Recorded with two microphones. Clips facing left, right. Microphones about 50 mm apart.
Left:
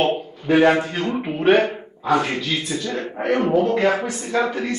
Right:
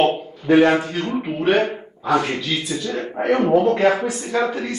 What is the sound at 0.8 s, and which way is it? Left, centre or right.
Speech, left.